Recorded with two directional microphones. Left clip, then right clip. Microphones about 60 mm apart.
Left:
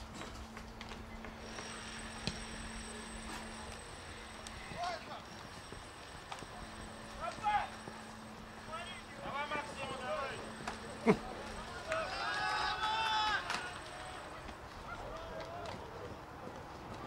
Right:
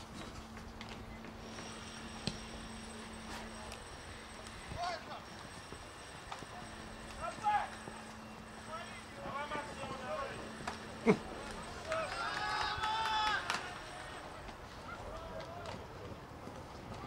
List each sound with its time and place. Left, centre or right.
7.2 s clip-clop: centre
9.2 s vehicle: left
11.1 s insect: centre
11.9 s run: centre